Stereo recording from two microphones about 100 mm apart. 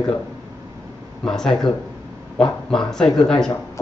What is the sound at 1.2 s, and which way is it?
Speech, 5° left (ahead or behind).